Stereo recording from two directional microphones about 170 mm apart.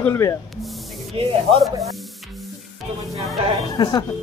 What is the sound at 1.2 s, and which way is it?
Speech, 35° right (ahead or behind).